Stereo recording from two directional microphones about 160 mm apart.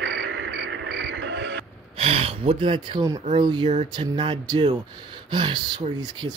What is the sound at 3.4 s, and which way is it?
Speech, 30° right (ahead or behind).